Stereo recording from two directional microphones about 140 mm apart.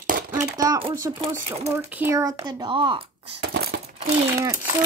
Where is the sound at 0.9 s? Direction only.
25° right (ahead or behind); by 3.3 s 40° right (ahead or behind).